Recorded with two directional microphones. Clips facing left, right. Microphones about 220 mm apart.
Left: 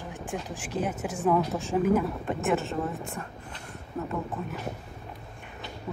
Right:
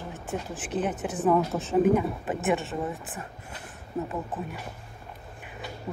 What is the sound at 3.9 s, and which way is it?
Speech, 15° right (ahead or behind).